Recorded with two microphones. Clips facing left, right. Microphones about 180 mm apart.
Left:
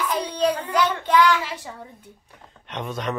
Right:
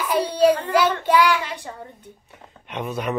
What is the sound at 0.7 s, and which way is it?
Child singing, 10° right (ahead or behind).